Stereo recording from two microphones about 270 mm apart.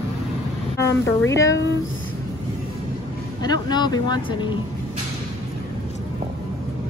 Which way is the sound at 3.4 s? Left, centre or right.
Centre.